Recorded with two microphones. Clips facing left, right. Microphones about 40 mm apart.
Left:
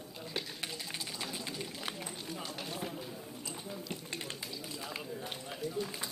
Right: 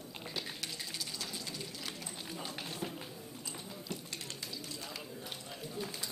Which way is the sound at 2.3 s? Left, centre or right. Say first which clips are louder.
Left 1 dB; centre.